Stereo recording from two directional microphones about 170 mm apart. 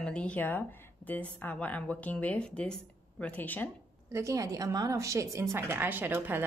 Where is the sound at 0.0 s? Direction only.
5° left (ahead or behind).